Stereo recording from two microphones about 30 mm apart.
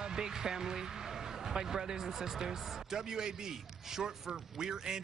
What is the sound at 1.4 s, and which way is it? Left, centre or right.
A man's voice, centre.